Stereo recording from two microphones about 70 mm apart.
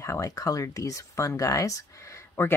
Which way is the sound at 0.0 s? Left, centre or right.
Left.